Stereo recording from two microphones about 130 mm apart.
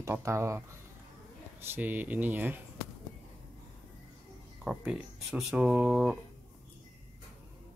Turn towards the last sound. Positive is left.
turn(degrees=-5)  # may be behind; listen again after turning